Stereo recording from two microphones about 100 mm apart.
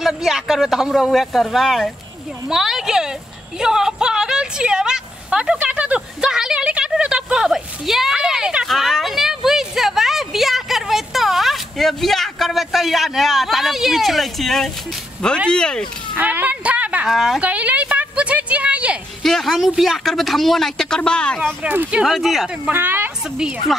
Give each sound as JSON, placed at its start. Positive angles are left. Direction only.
{"t": 0.0, "sound": "speech", "side_deg": -5}
{"t": 2.5, "sound": "a sound", "side_deg": -5}
{"t": 15.5, "sound": "speech", "side_deg": 10}
{"t": 16.2, "sound": "a woman's voice", "side_deg": -15}
{"t": 17.1, "sound": "speech", "side_deg": 0}
{"t": 17.4, "sound": "a woman's voice", "side_deg": -15}
{"t": 19.2, "sound": "speech", "side_deg": 0}
{"t": 21.6, "sound": "a woman's voice", "side_deg": -15}
{"t": 22.0, "sound": "speech", "side_deg": 0}
{"t": 22.7, "sound": "speech", "side_deg": -20}